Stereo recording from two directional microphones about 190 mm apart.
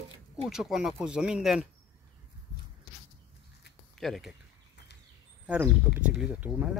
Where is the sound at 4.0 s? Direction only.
Centre (ahead or behind).